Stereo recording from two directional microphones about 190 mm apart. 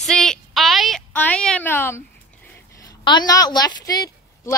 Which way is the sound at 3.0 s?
25° left (ahead or behind).